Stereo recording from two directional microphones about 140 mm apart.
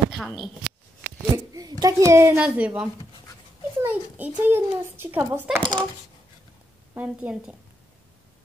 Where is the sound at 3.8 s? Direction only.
15° right (ahead or behind).